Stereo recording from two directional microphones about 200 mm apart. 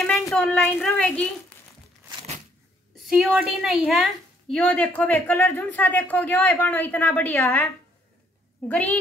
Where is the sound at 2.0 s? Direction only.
30° right (ahead or behind).